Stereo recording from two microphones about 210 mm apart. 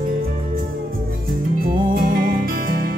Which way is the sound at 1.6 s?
40° right (ahead or behind).